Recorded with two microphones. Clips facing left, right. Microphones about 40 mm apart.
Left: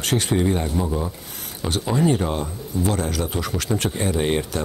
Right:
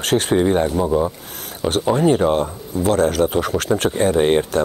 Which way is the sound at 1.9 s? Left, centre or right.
Right.